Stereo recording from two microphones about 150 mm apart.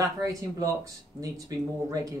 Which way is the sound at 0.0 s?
20° right (ahead or behind).